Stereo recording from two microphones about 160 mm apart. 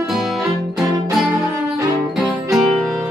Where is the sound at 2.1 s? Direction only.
Centre (ahead or behind).